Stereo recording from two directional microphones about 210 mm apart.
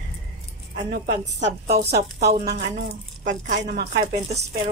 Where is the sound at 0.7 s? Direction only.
45° right (ahead or behind).